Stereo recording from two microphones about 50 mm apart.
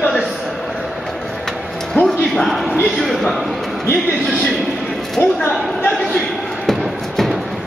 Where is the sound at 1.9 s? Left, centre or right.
Centre.